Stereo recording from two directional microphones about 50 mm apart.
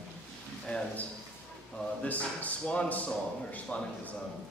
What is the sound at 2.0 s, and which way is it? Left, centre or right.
Speech, left.